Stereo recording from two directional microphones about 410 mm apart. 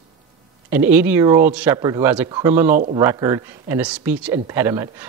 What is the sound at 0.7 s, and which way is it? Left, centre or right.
A man's voice, centre.